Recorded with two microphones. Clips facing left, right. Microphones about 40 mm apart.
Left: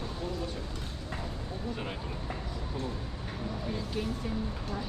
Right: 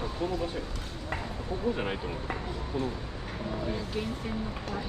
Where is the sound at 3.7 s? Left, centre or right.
Right.